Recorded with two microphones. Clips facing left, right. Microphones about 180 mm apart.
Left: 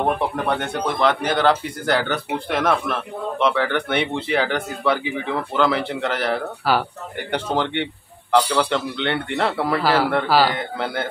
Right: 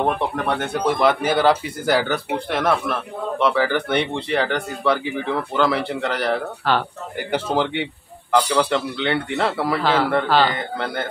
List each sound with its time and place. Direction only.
0.0 s speech: centre (ahead or behind)